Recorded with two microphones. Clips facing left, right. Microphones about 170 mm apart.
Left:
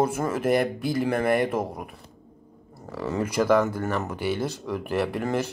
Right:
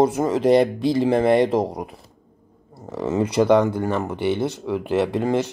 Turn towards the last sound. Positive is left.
turn(degrees=-15)  # may be behind; listen again after turning